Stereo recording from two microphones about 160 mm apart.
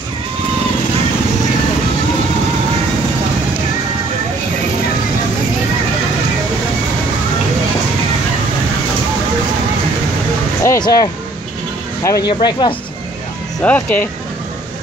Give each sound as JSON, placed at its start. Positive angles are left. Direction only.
{"t": 10.6, "sound": "music", "side_deg": 20}
{"t": 12.0, "sound": "speech", "side_deg": 20}
{"t": 13.7, "sound": "speech", "side_deg": 10}